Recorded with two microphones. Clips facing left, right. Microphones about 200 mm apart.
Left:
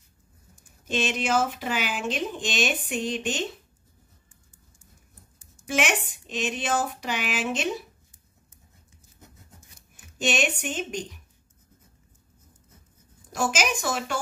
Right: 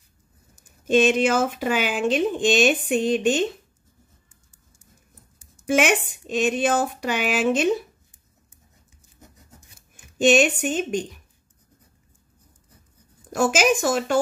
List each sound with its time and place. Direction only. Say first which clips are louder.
0.8 s speech: right 9 dB; 55° right (ahead or behind)
5.4 s a sound: right 7 dB; 55° right (ahead or behind)
6.3 s speech: right 7 dB; 55° right (ahead or behind)
10.2 s speech: right 9 dB; 50° right (ahead or behind)
13.3 s speech: right 7 dB; 50° right (ahead or behind)